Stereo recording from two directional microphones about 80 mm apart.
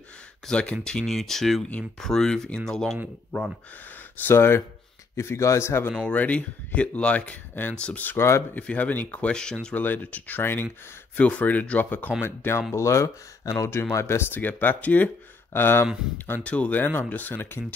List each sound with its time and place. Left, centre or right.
0.5 s speech: centre
4.2 s speech: left
6.0 s speech: centre
8.2 s speech: left
8.5 s speech: centre
9.8 s speech: left
16.4 s speech: centre